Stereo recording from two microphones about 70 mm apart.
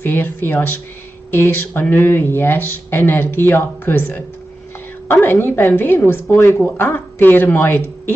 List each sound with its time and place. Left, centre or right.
0.0 s speech: left